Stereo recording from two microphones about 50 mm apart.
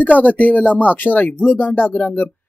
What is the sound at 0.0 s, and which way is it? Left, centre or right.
Speech, left.